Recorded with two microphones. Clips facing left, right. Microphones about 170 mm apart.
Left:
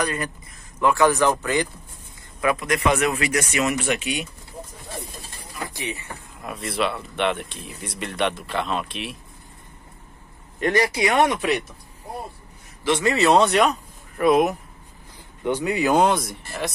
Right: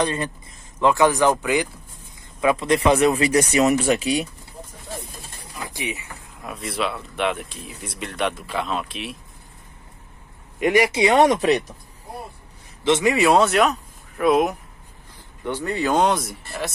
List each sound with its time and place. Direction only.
0.0 s speech: 25° right (ahead or behind); by 1.7 s 10° right (ahead or behind)
2.4 s speech: 25° right (ahead or behind)
5.7 s speech: 15° right (ahead or behind)
6.4 s speech: centre (ahead or behind)
10.6 s speech: 15° right (ahead or behind)
11.1 s speech: 40° right (ahead or behind)
12.8 s speech: 20° right (ahead or behind); by 14.6 s centre (ahead or behind)
15.4 s speech: 15° left (ahead or behind); by 16.7 s centre (ahead or behind)